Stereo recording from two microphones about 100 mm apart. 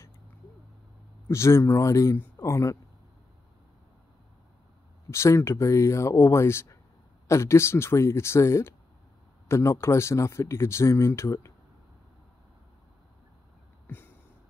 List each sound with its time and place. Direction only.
1.3 s speech: 30° left (ahead or behind)
5.1 s speech: 30° left (ahead or behind)
13.8 s a sound: 20° left (ahead or behind)